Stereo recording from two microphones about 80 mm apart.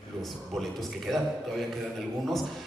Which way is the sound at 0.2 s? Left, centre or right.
Centre.